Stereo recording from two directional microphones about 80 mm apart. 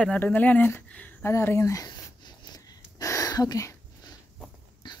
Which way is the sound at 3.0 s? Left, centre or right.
Left.